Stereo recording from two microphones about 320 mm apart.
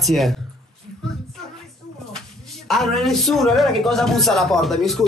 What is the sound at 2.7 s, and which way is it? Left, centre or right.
Speech, centre.